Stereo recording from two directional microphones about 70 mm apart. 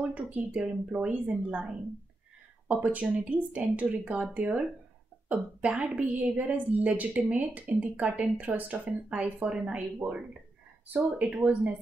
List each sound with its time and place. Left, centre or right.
0.1 s a woman's voice: centre
2.7 s a woman's voice: right